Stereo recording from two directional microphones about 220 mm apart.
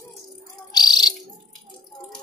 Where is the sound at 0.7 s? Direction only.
20° left (ahead or behind).